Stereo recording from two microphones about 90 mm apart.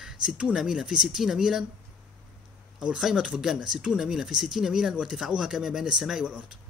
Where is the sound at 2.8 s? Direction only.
5° right (ahead or behind).